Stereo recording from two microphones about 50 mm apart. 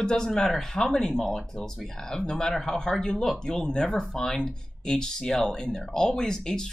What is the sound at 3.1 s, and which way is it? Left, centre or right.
Speech, centre.